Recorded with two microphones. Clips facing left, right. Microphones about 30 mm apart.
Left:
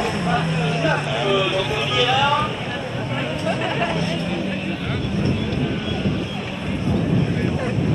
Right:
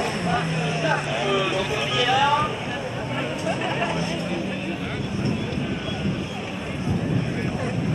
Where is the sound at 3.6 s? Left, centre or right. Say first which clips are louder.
Left 3 dB; left.